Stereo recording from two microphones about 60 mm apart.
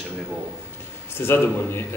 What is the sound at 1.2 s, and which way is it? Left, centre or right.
Speech, left.